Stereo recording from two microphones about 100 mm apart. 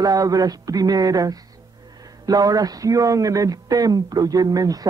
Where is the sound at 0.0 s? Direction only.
35° right (ahead or behind).